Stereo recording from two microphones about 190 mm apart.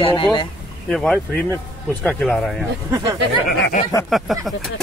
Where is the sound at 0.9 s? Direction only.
5° left (ahead or behind).